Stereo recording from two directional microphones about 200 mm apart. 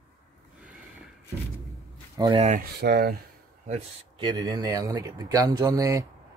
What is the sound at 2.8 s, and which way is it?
Speech, 50° right (ahead or behind).